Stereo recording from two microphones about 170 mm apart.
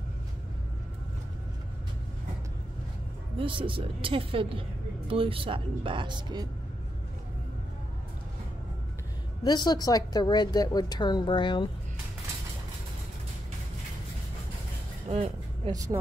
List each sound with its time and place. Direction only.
3.3 s a woman's voice: 30° right (ahead or behind)
9.4 s a woman's voice: 25° left (ahead or behind)
15.0 s music: 40° right (ahead or behind)
15.7 s speech: 20° right (ahead or behind)